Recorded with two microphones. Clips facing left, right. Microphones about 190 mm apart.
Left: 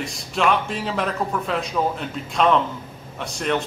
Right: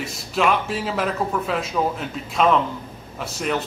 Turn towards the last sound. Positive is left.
turn(degrees=-5)  # may be behind; listen again after turning